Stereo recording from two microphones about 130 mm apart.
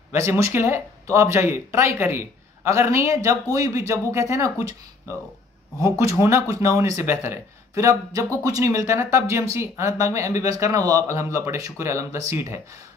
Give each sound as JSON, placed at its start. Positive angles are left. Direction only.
{"t": 0.1, "sound": "speech", "side_deg": -20}
{"t": 5.8, "sound": "speech", "side_deg": -25}